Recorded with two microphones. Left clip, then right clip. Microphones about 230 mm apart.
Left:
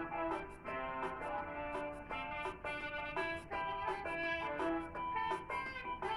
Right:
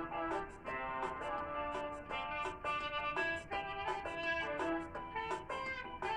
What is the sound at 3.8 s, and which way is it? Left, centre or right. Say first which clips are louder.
Music: even; right.